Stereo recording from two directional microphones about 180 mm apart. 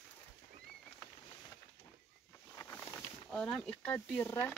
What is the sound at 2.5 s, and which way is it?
Speech, 10° left (ahead or behind).